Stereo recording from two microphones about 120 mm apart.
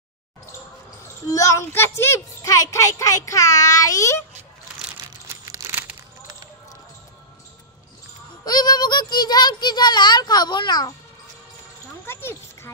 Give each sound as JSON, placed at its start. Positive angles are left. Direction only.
{"t": 1.2, "sound": "a child's voice", "side_deg": 25}
{"t": 5.3, "sound": "crumpling", "side_deg": -25}
{"t": 8.5, "sound": "a child's voice", "side_deg": 35}
{"t": 12.1, "sound": "speech", "side_deg": 20}